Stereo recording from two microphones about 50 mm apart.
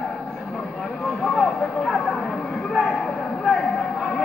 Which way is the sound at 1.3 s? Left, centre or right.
Centre.